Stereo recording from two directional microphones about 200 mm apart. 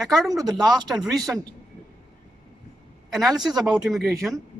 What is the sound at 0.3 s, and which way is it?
Speech, 20° right (ahead or behind).